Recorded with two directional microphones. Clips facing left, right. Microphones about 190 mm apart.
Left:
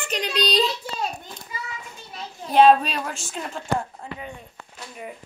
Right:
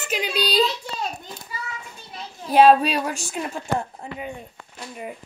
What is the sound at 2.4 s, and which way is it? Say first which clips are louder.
Speech: right 1 dB; 10° right (ahead or behind).